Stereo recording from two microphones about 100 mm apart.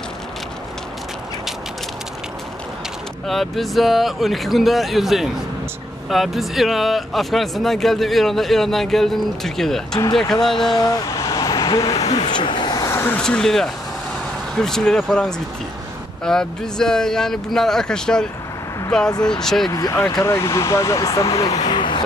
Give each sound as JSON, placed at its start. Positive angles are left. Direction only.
{"t": 3.3, "sound": "speech", "side_deg": 0}
{"t": 10.5, "sound": "a sound", "side_deg": 45}
{"t": 12.3, "sound": "vehicle", "side_deg": 50}
{"t": 12.8, "sound": "a sound", "side_deg": 25}
{"t": 13.2, "sound": "speech", "side_deg": 5}
{"t": 19.7, "sound": "speech", "side_deg": 30}